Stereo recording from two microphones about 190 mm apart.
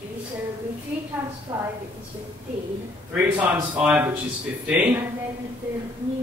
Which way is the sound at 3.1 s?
10° right (ahead or behind).